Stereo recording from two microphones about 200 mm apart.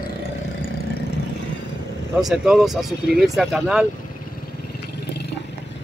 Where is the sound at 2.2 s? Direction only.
Centre (ahead or behind).